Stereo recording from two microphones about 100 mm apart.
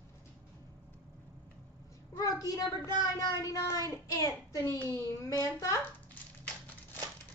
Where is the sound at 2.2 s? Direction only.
35° left (ahead or behind).